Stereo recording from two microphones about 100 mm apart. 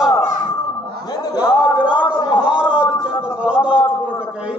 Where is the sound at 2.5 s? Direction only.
10° right (ahead or behind).